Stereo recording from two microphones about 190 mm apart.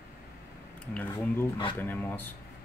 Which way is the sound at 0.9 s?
10° left (ahead or behind).